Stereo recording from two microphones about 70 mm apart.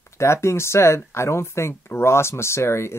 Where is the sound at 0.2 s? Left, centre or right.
Left.